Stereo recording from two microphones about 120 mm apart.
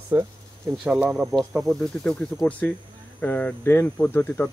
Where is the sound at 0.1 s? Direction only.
20° right (ahead or behind).